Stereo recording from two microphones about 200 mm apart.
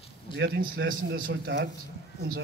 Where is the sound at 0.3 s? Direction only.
25° left (ahead or behind).